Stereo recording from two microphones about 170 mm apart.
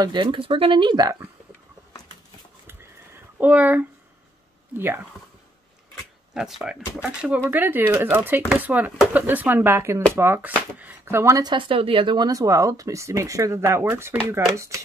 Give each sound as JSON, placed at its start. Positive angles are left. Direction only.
{"t": 0.0, "sound": "speech", "side_deg": -30}
{"t": 3.3, "sound": "speech", "side_deg": -10}
{"t": 6.3, "sound": "speech", "side_deg": 0}